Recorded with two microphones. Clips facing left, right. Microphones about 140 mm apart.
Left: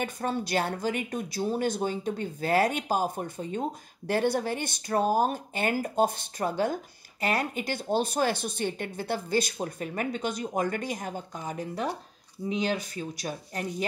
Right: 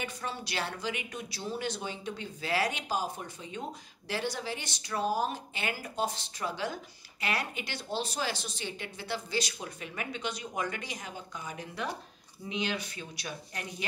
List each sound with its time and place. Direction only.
0.0 s speech: 50° left (ahead or behind)